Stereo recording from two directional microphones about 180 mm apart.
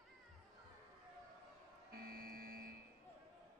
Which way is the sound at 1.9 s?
55° right (ahead or behind).